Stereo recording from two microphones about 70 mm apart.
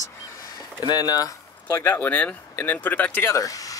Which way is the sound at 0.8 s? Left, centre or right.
Left.